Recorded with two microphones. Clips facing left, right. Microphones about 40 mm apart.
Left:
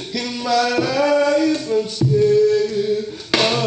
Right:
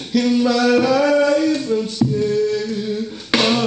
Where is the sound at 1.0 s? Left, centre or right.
Centre.